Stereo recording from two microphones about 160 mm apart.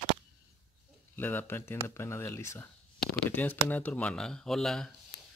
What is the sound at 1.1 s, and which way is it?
Speech, 10° left (ahead or behind).